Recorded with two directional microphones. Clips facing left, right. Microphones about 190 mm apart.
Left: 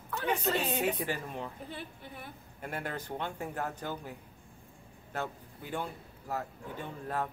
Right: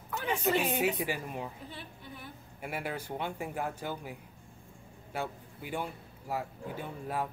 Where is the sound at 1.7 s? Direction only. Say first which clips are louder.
Left 2 dB; 50° left (ahead or behind).